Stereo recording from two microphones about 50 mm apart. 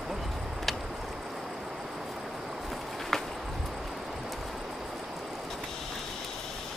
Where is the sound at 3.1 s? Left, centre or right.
Centre.